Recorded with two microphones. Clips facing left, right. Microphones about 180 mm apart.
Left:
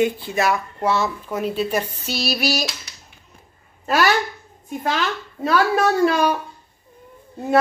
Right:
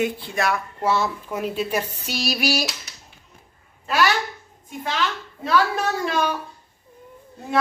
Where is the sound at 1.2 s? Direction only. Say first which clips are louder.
Left 3 dB; 10° right (ahead or behind).